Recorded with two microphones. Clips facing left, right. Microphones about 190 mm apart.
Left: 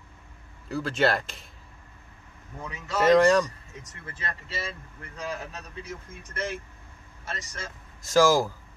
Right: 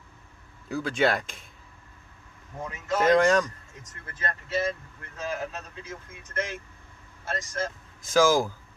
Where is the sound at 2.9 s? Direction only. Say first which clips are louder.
Left 2 dB; centre (ahead or behind).